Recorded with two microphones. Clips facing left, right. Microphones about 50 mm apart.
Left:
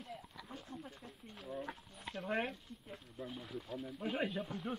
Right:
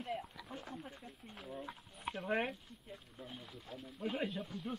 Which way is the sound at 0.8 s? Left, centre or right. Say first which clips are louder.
Right 1 dB; centre.